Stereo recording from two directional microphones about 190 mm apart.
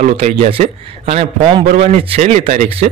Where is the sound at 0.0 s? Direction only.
35° right (ahead or behind).